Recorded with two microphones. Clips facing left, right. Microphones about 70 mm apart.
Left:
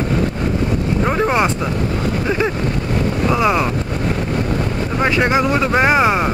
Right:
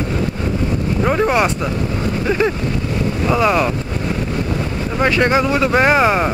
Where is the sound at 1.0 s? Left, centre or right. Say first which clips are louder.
Right 2 dB; centre.